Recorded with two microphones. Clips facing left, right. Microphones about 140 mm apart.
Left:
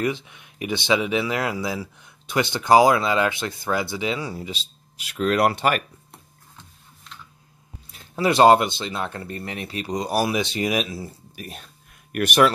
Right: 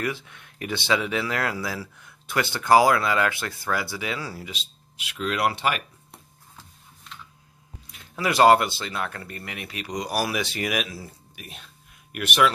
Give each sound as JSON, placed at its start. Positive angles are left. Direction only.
{"t": 0.0, "sound": "speech", "side_deg": 20}
{"t": 4.9, "sound": "speech", "side_deg": 45}
{"t": 7.9, "sound": "speech", "side_deg": 30}
{"t": 11.3, "sound": "speech", "side_deg": 45}